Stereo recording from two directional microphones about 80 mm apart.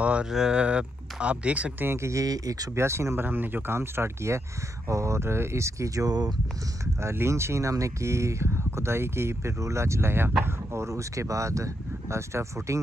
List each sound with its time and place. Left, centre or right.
0.0 s speech: centre
1.9 s speech: right
2.7 s speech: right
7.0 s speech: right